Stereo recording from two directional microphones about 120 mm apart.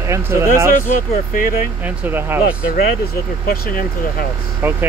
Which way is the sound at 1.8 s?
15° right (ahead or behind).